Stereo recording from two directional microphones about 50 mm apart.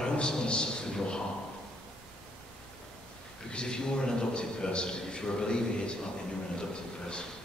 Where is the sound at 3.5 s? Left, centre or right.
Centre.